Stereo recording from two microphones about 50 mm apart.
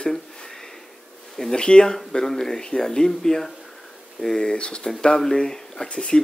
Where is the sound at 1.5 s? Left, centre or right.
Centre.